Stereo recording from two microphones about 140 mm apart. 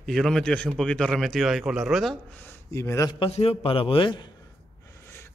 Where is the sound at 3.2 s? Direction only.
45° left (ahead or behind).